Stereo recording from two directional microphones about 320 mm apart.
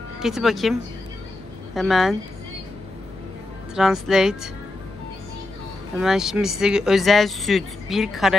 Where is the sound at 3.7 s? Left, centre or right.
Centre.